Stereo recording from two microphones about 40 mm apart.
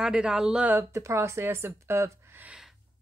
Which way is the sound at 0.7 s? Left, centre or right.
Right.